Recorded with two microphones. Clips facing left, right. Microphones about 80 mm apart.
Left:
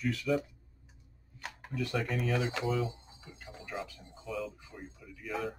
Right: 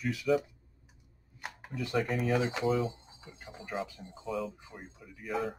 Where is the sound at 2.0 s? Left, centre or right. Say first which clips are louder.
Right 4 dB; centre.